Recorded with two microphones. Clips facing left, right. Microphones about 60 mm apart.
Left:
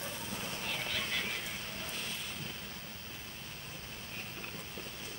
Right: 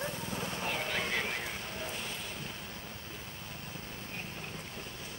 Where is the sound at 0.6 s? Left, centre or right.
Right.